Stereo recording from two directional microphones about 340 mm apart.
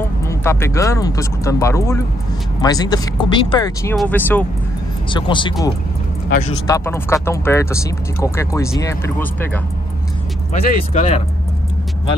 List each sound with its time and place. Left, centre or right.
0.3 s speech: centre
6.7 s speech: centre
10.5 s speech: centre